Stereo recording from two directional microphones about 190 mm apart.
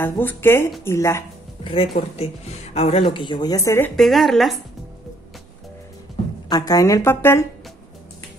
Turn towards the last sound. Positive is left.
turn(degrees=10)  # may be behind; listen again after turning